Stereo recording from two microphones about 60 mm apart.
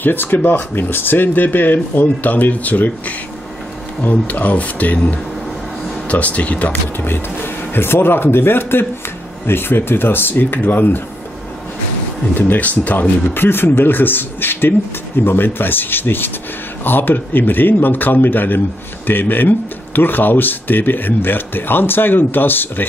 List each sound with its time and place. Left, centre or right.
0.0 s speech: left
12.4 s speech: left